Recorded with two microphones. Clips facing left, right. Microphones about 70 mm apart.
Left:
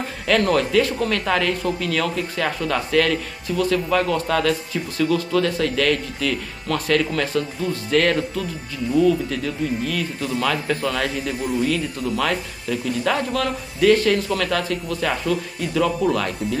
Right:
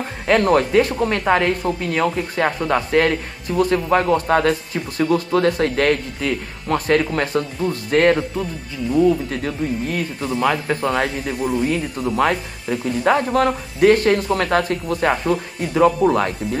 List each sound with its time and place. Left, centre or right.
0.4 s a woman's voice: right
10.2 s a woman's voice: right